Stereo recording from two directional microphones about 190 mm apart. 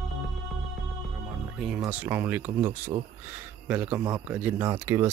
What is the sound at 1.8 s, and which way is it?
Speech, 10° right (ahead or behind).